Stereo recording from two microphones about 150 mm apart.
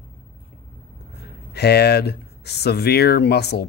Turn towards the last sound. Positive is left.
turn(degrees=90)